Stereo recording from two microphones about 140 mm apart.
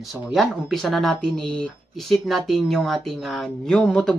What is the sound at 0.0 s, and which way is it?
Speech, centre (ahead or behind).